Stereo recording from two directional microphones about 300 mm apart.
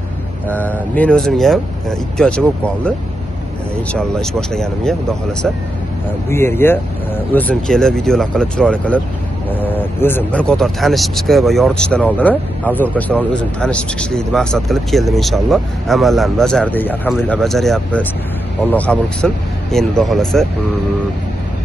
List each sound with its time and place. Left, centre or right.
0.5 s speech: centre
3.9 s speech: centre
6.2 s speech: centre